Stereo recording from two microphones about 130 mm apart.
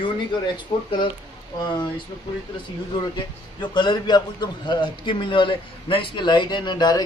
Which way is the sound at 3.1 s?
35° left (ahead or behind).